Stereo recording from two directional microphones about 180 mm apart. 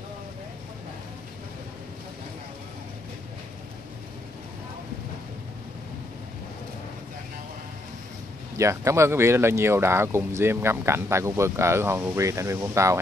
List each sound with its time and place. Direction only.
8.5 s speech: 15° right (ahead or behind)